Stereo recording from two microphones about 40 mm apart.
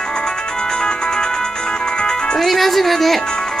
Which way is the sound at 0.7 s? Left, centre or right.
Left.